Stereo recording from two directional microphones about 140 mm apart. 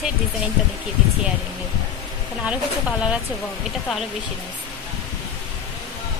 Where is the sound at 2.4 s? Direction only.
10° right (ahead or behind).